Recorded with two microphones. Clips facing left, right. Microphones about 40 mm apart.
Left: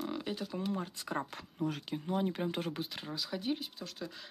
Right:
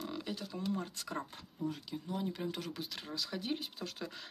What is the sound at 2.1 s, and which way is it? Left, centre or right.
Speech, left.